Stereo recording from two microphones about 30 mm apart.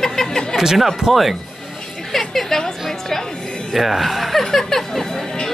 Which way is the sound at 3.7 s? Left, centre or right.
Centre.